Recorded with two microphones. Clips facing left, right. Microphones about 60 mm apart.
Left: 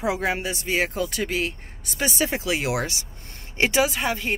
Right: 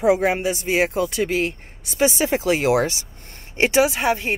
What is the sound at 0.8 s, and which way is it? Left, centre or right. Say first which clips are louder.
Speech: right 5 dB; right.